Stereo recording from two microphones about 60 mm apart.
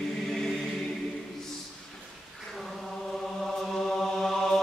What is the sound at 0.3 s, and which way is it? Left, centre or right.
Choir, centre.